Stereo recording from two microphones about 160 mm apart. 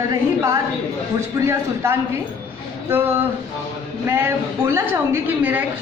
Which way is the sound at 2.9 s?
15° right (ahead or behind).